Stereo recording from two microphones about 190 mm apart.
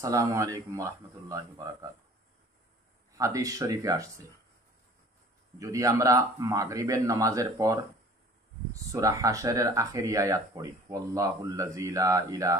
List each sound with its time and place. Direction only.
0.0 s speech: 15° right (ahead or behind)
3.1 s speech: 15° right (ahead or behind)
5.6 s speech: 15° right (ahead or behind)